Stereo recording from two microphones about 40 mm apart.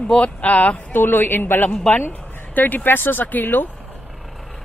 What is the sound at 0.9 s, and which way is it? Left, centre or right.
Speech, left.